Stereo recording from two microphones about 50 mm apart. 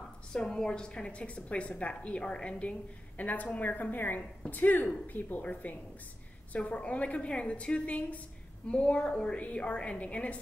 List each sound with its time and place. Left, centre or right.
0.3 s a woman's voice: centre
3.5 s a woman's voice: left